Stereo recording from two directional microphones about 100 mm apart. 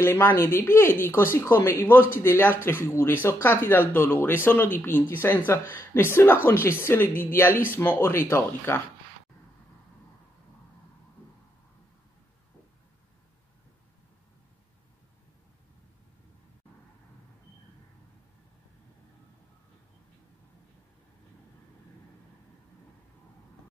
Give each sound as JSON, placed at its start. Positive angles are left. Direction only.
{"t": 0.0, "sound": "speech", "side_deg": 20}